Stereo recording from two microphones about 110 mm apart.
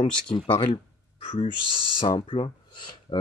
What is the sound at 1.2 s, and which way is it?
Speech, 55° left (ahead or behind).